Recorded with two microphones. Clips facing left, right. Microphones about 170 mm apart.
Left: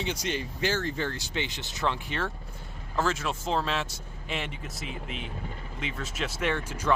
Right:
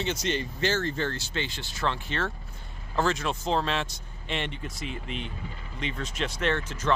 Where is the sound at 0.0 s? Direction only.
10° left (ahead or behind).